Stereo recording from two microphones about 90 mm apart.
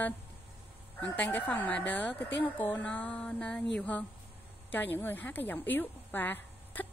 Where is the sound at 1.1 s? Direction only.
20° left (ahead or behind).